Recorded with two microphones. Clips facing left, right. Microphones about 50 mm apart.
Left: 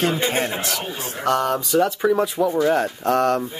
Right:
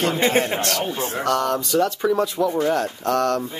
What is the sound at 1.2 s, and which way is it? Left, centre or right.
Speech, centre.